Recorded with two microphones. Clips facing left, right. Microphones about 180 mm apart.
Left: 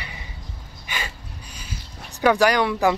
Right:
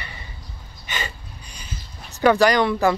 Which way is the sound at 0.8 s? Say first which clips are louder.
Right 1 dB; 5° left (ahead or behind).